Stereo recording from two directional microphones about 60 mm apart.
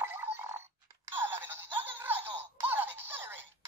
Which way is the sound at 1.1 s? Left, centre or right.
Right.